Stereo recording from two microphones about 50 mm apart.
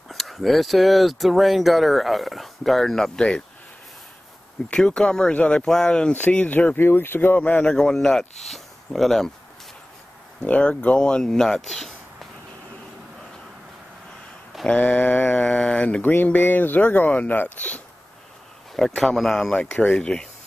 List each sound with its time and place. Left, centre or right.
0.1 s speech: centre
3.2 s speech: centre
4.7 s speech: centre
5.3 s mantra: left
5.7 s speech: centre
6.1 s speech: left
6.8 s speech: left
7.6 s speech: centre
10.4 s speech: left; by 12.3 s centre
14.7 s speech: left
15.4 s mantra: centre
16.0 s speech: left
18.8 s speech: centre